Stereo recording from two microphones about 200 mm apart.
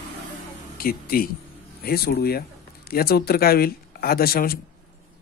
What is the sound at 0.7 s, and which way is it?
A man's voice, 45° left (ahead or behind).